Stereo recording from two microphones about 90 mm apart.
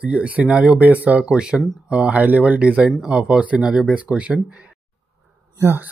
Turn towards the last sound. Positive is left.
turn(degrees=-25)  # may be behind; listen again after turning